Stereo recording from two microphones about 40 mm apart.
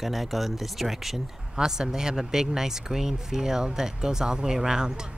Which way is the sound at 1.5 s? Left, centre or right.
Centre.